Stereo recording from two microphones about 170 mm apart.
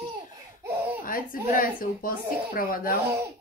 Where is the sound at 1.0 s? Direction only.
55° left (ahead or behind).